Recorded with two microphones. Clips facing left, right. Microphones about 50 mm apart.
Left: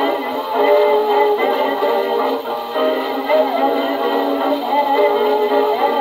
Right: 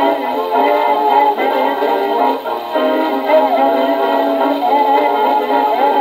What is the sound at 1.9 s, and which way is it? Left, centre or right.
Music, right.